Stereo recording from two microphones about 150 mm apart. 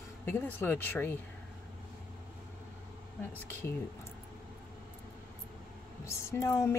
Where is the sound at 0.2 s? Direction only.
15° left (ahead or behind).